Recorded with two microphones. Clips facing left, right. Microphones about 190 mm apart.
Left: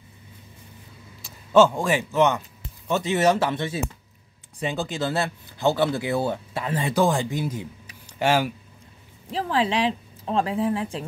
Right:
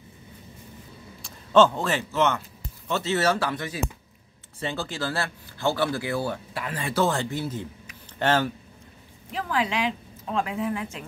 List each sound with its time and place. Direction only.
1.2 s speech: 10° left (ahead or behind)
9.3 s speech: 30° left (ahead or behind)